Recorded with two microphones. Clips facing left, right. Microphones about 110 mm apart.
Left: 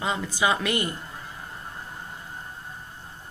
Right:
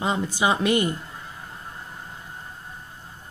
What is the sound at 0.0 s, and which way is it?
Speech, 25° right (ahead or behind).